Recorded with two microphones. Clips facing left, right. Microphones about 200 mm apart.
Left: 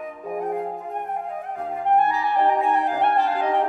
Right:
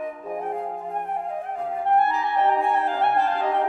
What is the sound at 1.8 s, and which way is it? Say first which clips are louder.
Clarinet: left 1 dB; 15° left (ahead or behind).